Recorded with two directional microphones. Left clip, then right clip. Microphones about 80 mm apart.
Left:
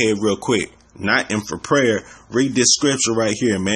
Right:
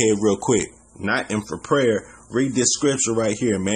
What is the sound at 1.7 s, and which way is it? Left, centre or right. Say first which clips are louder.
Speech: left 2 dB; left.